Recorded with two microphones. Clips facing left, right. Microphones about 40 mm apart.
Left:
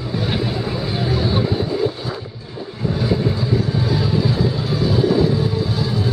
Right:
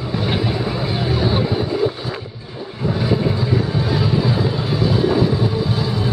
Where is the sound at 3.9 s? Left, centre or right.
Centre.